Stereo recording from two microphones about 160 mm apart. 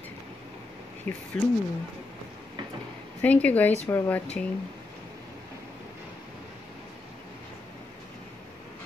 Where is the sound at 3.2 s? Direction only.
10° left (ahead or behind).